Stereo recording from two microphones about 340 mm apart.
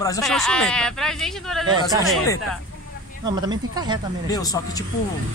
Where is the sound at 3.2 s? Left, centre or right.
Centre.